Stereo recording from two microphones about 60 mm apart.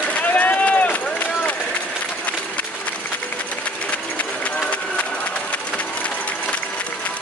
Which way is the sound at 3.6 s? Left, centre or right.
Left.